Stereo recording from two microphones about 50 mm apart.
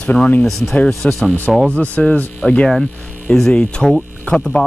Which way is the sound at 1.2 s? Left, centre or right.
Left.